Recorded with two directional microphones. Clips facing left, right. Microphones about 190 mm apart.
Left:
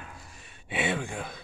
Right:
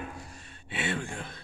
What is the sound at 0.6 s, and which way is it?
Speech, 15° left (ahead or behind).